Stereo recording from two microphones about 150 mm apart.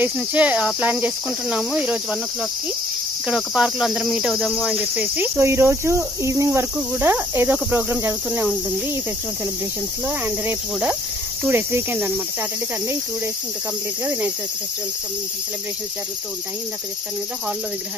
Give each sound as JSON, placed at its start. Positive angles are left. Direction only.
{"t": 0.0, "sound": "cricket", "side_deg": -10}
{"t": 3.3, "sound": "cricket", "side_deg": -5}
{"t": 10.0, "sound": "cricket", "side_deg": -15}